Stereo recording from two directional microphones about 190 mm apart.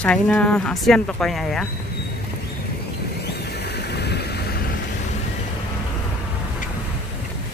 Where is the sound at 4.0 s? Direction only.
60° left (ahead or behind).